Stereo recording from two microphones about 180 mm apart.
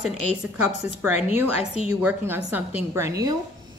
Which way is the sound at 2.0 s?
10° right (ahead or behind).